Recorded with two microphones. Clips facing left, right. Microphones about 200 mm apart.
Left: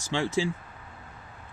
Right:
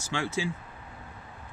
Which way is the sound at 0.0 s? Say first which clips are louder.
Left 3 dB; 15° left (ahead or behind).